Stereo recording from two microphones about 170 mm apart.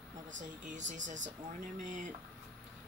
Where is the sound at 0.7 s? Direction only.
45° right (ahead or behind).